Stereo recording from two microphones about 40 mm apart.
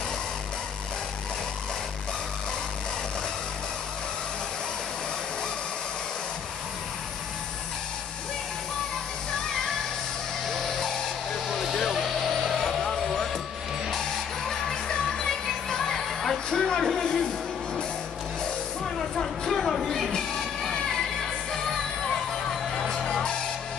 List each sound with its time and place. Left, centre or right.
11.4 s music: centre
12.8 s music: centre
18.9 s a sound: centre
20.2 s music: centre
22.8 s music: centre